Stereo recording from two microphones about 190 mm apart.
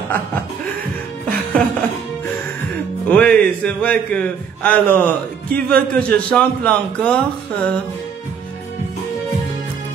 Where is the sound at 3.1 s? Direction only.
5° left (ahead or behind).